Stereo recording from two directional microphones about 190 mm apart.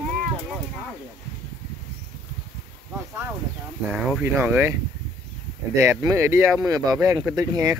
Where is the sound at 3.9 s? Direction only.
Centre (ahead or behind).